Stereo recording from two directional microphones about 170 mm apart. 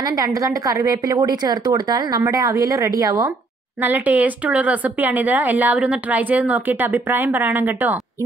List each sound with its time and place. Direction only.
0.0 s a woman's voice: 20° right (ahead or behind)